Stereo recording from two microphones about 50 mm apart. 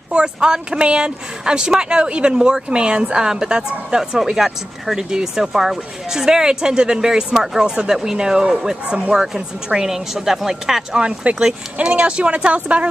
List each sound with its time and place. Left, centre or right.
0.1 s speech: centre
9.1 s speech: centre; by 12.8 s right